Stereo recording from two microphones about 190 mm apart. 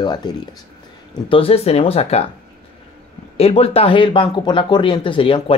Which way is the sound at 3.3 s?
30° left (ahead or behind).